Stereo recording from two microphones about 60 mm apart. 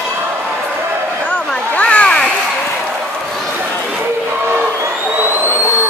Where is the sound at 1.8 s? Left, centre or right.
Left.